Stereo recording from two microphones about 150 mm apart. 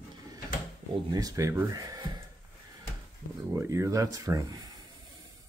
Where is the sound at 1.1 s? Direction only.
25° right (ahead or behind).